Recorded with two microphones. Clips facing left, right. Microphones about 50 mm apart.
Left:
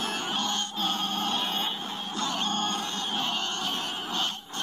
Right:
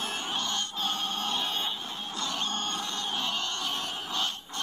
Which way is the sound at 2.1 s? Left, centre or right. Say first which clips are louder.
Left 3 dB; left.